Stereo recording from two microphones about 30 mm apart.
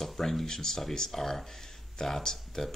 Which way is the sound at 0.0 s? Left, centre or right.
Centre.